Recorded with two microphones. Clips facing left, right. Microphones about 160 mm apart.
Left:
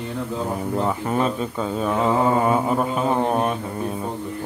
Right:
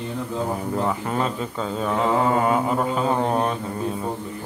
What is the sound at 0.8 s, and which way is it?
Mantra, 15° left (ahead or behind).